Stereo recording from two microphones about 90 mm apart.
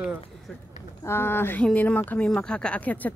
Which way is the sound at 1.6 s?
15° left (ahead or behind).